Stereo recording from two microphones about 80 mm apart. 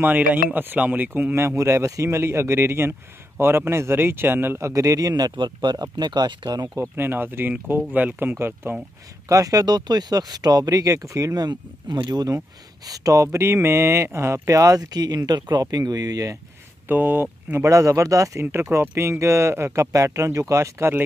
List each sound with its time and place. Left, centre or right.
0.0 s speech: right
4.7 s speech: right
6.8 s speech: right
9.3 s speech: right
16.8 s speech: right
17.6 s speech: right
18.4 s speech: right